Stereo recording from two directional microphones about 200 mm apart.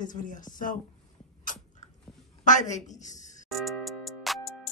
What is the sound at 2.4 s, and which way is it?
Speech, 40° left (ahead or behind).